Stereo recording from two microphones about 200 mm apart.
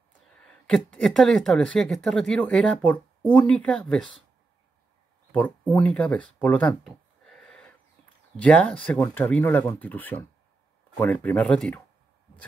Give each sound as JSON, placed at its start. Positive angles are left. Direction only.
{"t": 0.4, "sound": "speech", "side_deg": 5}
{"t": 5.3, "sound": "speech", "side_deg": 5}